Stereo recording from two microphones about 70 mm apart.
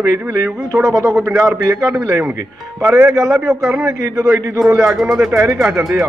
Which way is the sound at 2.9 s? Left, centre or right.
Right.